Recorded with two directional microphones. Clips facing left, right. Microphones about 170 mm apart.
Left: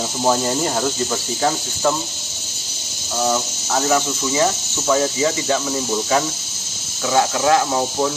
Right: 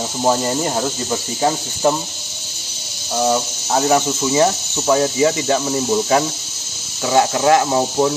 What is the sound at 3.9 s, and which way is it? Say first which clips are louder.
Cricket: right 4 dB; 20° right (ahead or behind).